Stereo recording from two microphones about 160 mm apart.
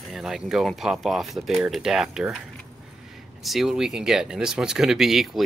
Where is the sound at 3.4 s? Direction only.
Centre (ahead or behind).